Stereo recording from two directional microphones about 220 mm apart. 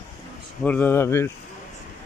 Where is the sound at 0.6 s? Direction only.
5° left (ahead or behind).